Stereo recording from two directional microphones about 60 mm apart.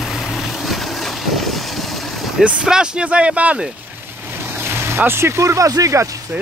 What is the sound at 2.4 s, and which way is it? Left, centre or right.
Speech, centre.